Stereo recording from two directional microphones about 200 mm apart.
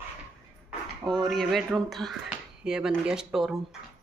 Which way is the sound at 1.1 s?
Centre (ahead or behind).